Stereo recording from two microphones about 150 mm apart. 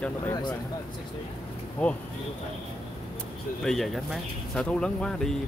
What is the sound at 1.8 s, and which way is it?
Speech, 5° left (ahead or behind).